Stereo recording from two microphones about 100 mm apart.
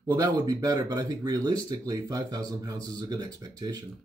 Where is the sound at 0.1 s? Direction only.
40° right (ahead or behind).